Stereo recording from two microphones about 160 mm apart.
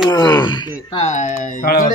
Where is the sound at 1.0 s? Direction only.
50° left (ahead or behind).